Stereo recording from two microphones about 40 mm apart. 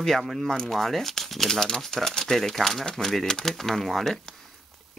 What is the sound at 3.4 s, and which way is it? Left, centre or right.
Speech, centre.